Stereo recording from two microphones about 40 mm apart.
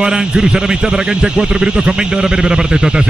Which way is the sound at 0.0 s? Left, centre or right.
Centre.